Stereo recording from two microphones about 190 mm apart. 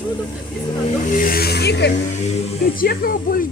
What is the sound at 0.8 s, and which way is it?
Vehicle, 45° left (ahead or behind).